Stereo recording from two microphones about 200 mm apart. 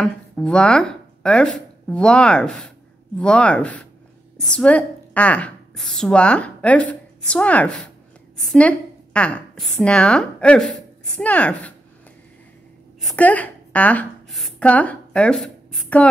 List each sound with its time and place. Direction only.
0.0 s a woman's voice: 5° left (ahead or behind)
13.0 s a woman's voice: 5° left (ahead or behind)